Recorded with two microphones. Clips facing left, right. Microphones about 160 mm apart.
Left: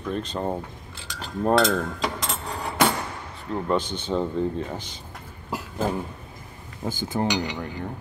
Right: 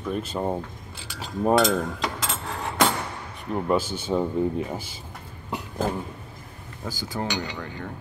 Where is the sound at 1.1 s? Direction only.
10° right (ahead or behind).